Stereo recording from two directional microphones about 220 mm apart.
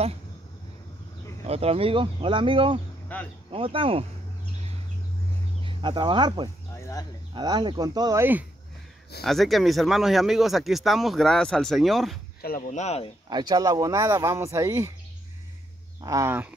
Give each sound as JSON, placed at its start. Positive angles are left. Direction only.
{"t": 1.4, "sound": "speech", "side_deg": -30}
{"t": 3.1, "sound": "speech", "side_deg": 10}
{"t": 3.5, "sound": "speech", "side_deg": -25}
{"t": 5.6, "sound": "speech", "side_deg": -20}
{"t": 6.8, "sound": "a sound", "side_deg": 15}
{"t": 7.3, "sound": "speech", "side_deg": -20}
{"t": 12.4, "sound": "speech", "side_deg": 40}
{"t": 13.3, "sound": "speech", "side_deg": -20}
{"t": 16.0, "sound": "speech", "side_deg": -15}